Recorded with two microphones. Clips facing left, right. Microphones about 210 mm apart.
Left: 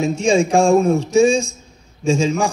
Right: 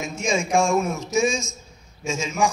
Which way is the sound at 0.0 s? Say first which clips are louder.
Left 9 dB; 30° left (ahead or behind).